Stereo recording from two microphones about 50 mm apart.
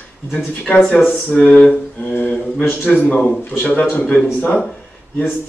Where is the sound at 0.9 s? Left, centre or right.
Left.